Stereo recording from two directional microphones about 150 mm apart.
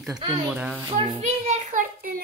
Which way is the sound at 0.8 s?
25° right (ahead or behind).